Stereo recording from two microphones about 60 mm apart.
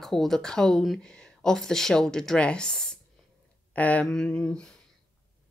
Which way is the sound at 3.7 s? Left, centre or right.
Left.